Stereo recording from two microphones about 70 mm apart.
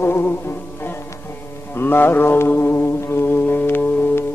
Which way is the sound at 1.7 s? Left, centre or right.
Left.